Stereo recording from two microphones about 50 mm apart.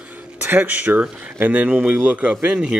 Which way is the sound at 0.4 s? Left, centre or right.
Right.